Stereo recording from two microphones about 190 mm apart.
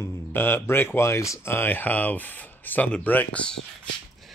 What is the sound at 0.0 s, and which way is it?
Speech, 15° left (ahead or behind).